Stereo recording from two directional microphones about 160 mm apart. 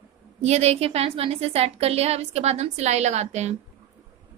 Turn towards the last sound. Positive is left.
turn(degrees=-45)  # may be behind; listen again after turning